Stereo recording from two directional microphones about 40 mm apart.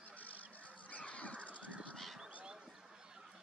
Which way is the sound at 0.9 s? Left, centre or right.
Left.